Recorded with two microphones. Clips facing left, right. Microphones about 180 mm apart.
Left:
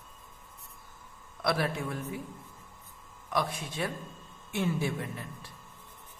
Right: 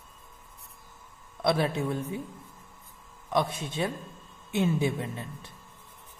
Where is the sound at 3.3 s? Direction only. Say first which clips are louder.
Right 4 dB; 25° right (ahead or behind).